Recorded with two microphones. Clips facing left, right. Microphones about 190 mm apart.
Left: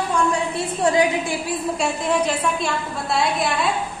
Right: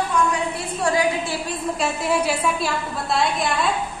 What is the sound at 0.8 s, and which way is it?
Speech, 20° left (ahead or behind).